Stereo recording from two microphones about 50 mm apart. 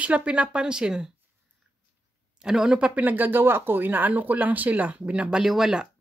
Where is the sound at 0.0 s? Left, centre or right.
Right.